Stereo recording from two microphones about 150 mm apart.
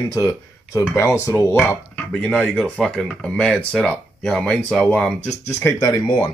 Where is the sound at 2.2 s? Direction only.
5° left (ahead or behind).